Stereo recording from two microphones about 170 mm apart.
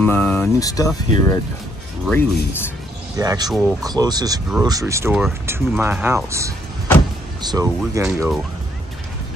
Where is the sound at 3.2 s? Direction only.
20° right (ahead or behind).